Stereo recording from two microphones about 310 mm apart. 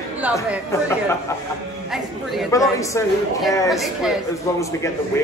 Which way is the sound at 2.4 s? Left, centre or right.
Centre.